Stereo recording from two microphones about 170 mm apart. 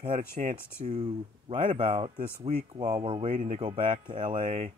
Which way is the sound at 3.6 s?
30° right (ahead or behind).